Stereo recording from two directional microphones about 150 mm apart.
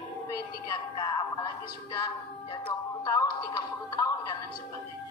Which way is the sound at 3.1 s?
25° left (ahead or behind).